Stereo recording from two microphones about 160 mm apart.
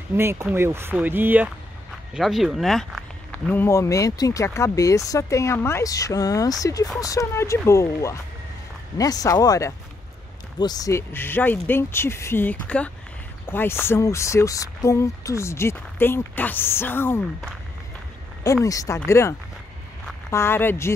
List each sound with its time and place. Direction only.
0.1 s speech: 15° right (ahead or behind)
2.1 s speech: centre (ahead or behind)
18.4 s speech: 20° left (ahead or behind)